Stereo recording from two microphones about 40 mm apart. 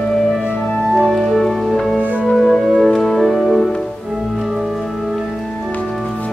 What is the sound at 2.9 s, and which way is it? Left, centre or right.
Music, centre.